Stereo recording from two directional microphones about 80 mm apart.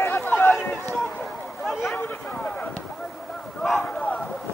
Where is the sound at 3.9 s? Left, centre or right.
Centre.